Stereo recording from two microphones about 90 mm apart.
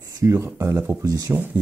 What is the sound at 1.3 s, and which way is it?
Speech, 25° right (ahead or behind).